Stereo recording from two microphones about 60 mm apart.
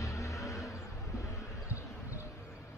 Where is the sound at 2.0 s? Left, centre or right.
Left.